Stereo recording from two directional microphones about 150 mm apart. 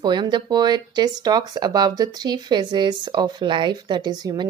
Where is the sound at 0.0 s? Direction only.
30° right (ahead or behind).